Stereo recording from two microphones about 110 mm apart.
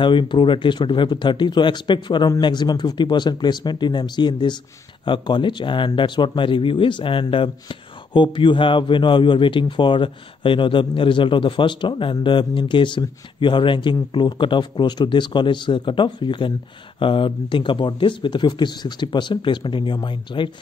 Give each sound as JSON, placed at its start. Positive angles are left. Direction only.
{"t": 0.0, "sound": "a man's voice", "side_deg": 45}